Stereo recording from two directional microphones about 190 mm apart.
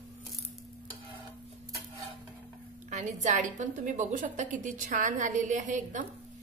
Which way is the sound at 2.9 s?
40° right (ahead or behind).